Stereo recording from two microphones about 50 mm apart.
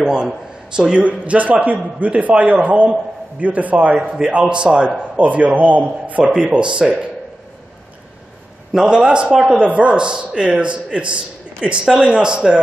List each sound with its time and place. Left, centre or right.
0.7 s a man's voice: right
8.7 s a man's voice: centre